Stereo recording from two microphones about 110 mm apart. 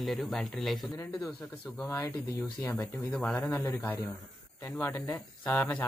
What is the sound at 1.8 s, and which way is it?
Speech, 25° left (ahead or behind).